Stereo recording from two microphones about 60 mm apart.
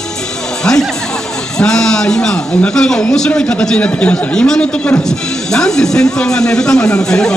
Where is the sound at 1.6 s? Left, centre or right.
Centre.